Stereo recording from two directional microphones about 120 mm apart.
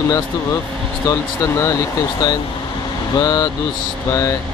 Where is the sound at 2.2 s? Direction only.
35° left (ahead or behind).